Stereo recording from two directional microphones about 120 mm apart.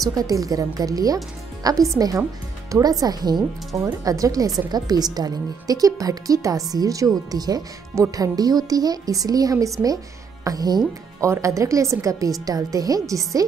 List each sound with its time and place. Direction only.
0.0 s a woman's voice: 30° right (ahead or behind)